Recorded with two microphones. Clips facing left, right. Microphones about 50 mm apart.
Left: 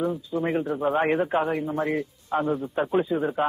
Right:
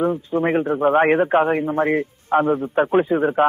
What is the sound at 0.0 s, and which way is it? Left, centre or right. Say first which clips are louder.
Speech: right 6 dB; right.